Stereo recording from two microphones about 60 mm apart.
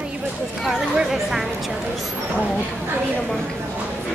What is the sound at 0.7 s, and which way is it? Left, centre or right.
Chatter, centre.